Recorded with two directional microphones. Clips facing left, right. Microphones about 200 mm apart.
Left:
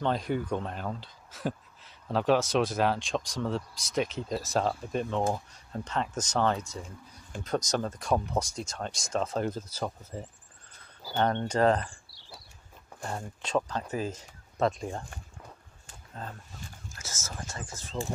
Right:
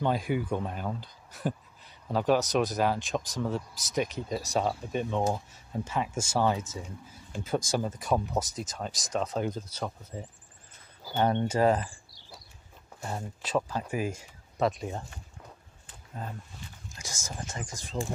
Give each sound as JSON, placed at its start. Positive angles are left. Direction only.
{"t": 0.0, "sound": "speech", "side_deg": -5}
{"t": 11.1, "sound": "speech", "side_deg": -10}
{"t": 13.4, "sound": "speech", "side_deg": -5}
{"t": 16.9, "sound": "speech", "side_deg": -15}